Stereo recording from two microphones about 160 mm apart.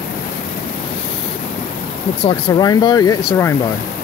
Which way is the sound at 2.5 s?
25° left (ahead or behind).